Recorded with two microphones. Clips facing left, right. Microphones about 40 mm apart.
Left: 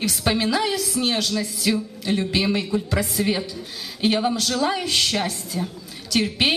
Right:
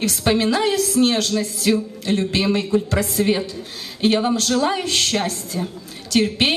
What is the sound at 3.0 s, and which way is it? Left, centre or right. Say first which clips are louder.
Speech: right 3 dB; centre.